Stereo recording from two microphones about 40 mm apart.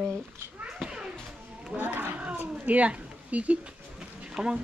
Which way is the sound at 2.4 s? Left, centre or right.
Right.